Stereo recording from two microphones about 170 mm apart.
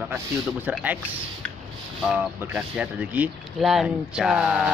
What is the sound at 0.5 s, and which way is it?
Speech, 10° right (ahead or behind).